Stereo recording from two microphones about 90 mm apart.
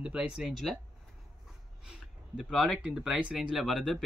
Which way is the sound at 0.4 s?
Centre (ahead or behind).